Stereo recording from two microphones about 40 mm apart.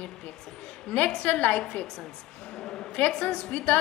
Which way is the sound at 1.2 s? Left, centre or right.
Left.